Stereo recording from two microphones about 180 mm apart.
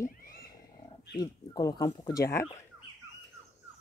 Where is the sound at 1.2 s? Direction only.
20° left (ahead or behind).